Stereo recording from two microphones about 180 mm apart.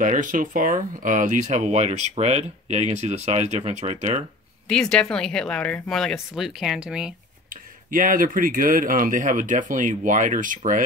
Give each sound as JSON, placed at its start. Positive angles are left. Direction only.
{"t": 0.0, "sound": "speech", "side_deg": -45}
{"t": 4.6, "sound": "speech", "side_deg": 5}
{"t": 7.4, "sound": "speech", "side_deg": -50}